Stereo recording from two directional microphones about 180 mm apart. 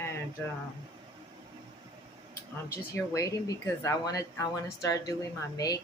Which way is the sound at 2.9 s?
15° left (ahead or behind).